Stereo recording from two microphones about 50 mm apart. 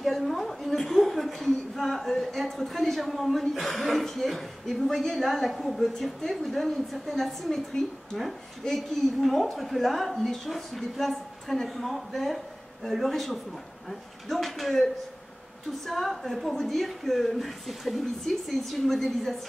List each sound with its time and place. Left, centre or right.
0.0 s a woman's voice: centre
15.9 s a woman's voice: centre